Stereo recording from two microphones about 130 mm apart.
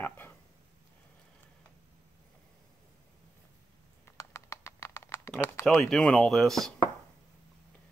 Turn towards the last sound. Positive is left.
turn(degrees=0)  # may be behind; listen again after turning